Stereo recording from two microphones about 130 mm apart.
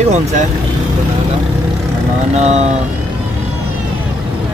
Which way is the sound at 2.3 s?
55° right (ahead or behind).